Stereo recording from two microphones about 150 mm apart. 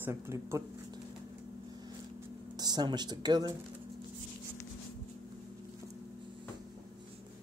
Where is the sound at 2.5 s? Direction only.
25° right (ahead or behind).